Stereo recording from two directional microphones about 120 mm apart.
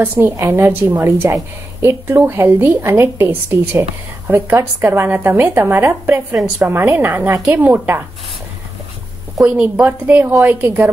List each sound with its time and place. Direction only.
0.2 s a woman's voice: 20° right (ahead or behind)
9.4 s a woman's voice: 10° right (ahead or behind)